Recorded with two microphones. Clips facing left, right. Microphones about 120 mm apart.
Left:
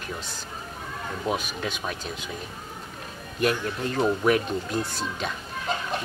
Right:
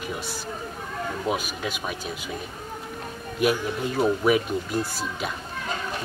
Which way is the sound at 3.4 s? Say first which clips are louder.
Right 2 dB; 10° right (ahead or behind).